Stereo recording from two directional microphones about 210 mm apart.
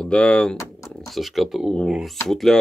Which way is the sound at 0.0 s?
5° left (ahead or behind).